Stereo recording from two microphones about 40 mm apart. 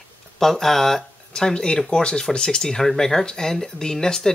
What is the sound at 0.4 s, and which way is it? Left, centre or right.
Speech, centre.